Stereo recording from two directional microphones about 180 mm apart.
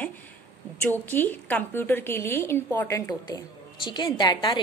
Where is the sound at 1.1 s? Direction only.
10° left (ahead or behind).